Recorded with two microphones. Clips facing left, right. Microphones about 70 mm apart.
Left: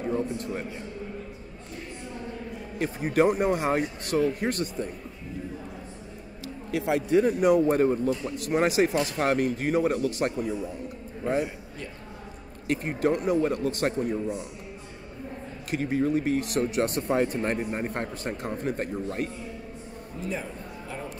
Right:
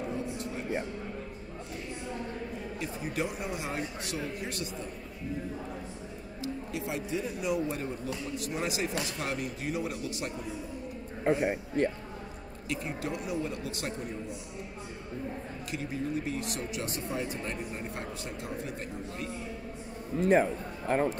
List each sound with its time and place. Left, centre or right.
0.1 s a man's voice: left
2.8 s a man's voice: left
6.4 s a man's voice: left
11.4 s a man's voice: right
12.6 s a man's voice: left
15.7 s a man's voice: left
20.2 s speech: right